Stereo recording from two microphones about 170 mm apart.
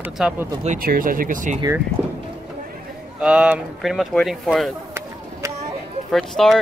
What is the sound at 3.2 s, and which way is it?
Speech, 5° right (ahead or behind).